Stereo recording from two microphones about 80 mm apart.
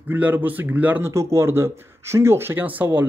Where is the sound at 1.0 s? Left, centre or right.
Right.